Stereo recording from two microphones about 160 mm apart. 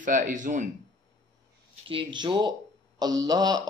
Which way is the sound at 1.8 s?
30° right (ahead or behind).